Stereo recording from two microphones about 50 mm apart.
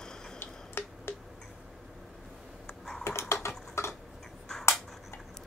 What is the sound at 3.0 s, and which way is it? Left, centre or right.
Typing, left.